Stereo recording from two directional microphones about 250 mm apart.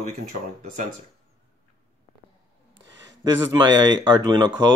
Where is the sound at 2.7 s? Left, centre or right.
Right.